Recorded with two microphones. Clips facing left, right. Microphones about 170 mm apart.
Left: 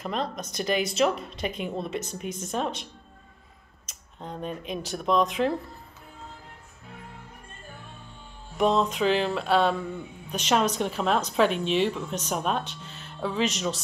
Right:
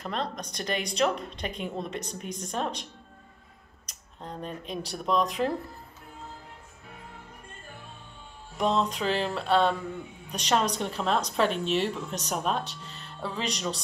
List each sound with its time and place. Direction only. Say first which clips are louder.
0.0 s a woman's voice: left 2 dB; 5° left (ahead or behind)
4.2 s a woman's voice: left 3 dB; centre (ahead or behind)
8.5 s a woman's voice: left 3 dB; 5° left (ahead or behind)